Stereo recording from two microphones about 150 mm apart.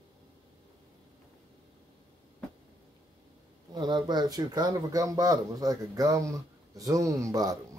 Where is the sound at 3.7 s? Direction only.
30° right (ahead or behind).